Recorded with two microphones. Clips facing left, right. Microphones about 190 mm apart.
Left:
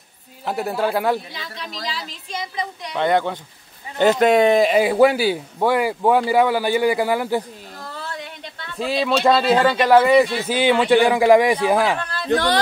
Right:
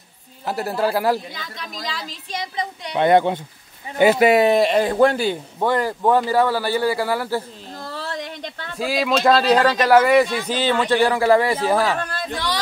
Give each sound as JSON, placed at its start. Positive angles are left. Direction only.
{"t": 0.5, "sound": "speech", "side_deg": 0}
{"t": 1.3, "sound": "speech", "side_deg": -45}
{"t": 2.5, "sound": "a woman's voice", "side_deg": -25}
{"t": 3.0, "sound": "speech", "side_deg": -15}
{"t": 7.8, "sound": "a sound", "side_deg": -35}
{"t": 8.7, "sound": "speech", "side_deg": -5}
{"t": 10.5, "sound": "speech", "side_deg": 15}
{"t": 12.0, "sound": "a sound", "side_deg": -45}